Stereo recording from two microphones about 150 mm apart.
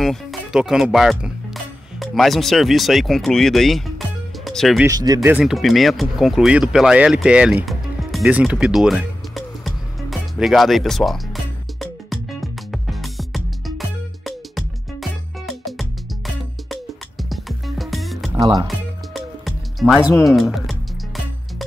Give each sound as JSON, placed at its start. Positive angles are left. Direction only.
{"t": 0.0, "sound": "speech", "side_deg": 0}
{"t": 4.8, "sound": "speech", "side_deg": -25}
{"t": 5.4, "sound": "speech", "side_deg": 0}
{"t": 7.6, "sound": "music", "side_deg": 0}
{"t": 20.2, "sound": "speech", "side_deg": 0}